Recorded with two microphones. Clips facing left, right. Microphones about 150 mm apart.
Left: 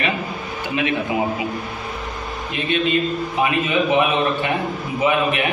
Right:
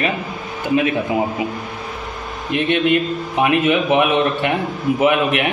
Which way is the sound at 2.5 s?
70° right (ahead or behind).